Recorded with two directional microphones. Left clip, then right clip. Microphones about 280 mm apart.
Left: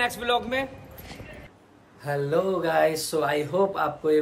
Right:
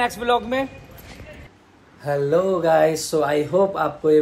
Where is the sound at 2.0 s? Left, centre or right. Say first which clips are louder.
Right 6 dB; centre.